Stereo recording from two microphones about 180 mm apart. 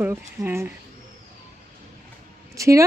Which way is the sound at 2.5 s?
15° right (ahead or behind).